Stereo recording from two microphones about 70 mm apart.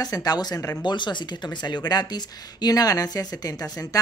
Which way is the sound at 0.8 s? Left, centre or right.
Left.